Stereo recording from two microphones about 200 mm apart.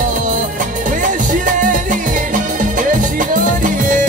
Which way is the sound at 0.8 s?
40° right (ahead or behind).